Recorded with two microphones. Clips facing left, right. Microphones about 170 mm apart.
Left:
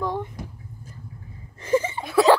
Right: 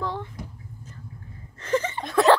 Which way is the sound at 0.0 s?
15° left (ahead or behind).